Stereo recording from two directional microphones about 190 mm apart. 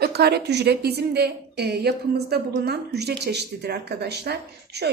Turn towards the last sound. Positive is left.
turn(degrees=-60)  # may be behind; listen again after turning